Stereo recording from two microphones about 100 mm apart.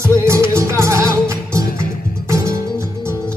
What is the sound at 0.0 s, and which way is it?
Music, 30° right (ahead or behind).